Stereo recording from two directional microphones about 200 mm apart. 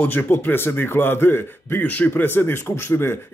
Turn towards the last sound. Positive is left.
turn(degrees=10)  # may be behind; listen again after turning